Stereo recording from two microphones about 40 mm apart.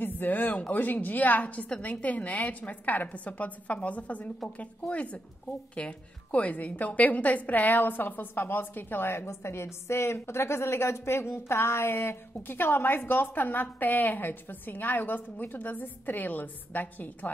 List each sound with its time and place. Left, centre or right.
0.0 s a woman's voice: left
6.4 s a woman's voice: left
13.4 s a woman's voice: left